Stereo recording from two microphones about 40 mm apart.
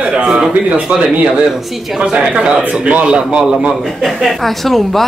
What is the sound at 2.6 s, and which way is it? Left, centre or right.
Speech, right.